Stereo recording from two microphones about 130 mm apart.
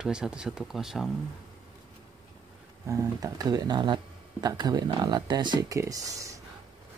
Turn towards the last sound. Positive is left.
turn(degrees=-25)  # may be behind; listen again after turning